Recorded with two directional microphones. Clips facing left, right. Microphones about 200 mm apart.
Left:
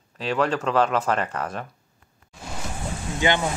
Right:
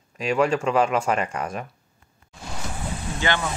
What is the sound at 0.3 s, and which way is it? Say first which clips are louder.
Speech: right 2 dB; 10° right (ahead or behind).